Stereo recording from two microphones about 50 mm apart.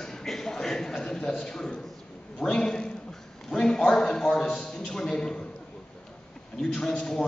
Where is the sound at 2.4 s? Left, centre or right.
Centre.